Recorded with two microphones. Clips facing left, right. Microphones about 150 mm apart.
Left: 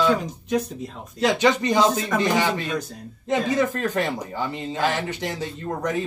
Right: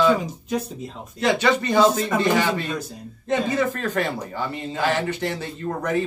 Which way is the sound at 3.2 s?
15° left (ahead or behind).